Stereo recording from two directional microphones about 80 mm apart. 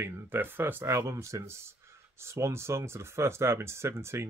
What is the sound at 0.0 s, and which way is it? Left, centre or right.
Speech, right.